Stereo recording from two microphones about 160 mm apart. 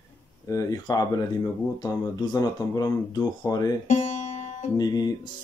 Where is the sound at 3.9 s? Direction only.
50° left (ahead or behind).